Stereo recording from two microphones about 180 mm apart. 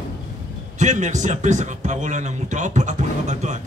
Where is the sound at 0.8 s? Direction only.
40° right (ahead or behind).